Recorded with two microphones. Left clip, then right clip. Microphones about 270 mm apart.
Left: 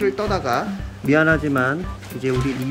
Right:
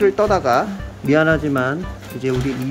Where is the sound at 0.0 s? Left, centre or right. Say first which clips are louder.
Right 6 dB; centre.